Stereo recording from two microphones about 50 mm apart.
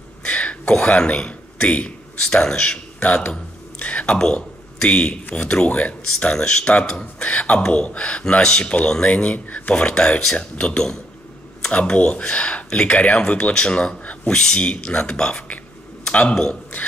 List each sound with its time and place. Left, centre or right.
0.2 s a sound: left
2.2 s a man's voice: centre
3.8 s speech: left
6.1 s a man's voice: centre
9.0 s speech: left